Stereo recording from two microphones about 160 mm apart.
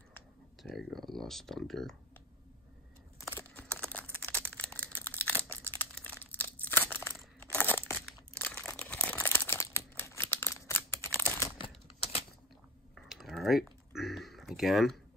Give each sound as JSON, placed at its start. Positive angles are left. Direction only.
{"t": 0.6, "sound": "speech", "side_deg": 0}
{"t": 3.2, "sound": "a sound", "side_deg": 15}
{"t": 4.1, "sound": "crumpling", "side_deg": 10}
{"t": 11.5, "sound": "typewriter", "side_deg": 35}
{"t": 12.9, "sound": "typing", "side_deg": 0}
{"t": 13.9, "sound": "a sound", "side_deg": 0}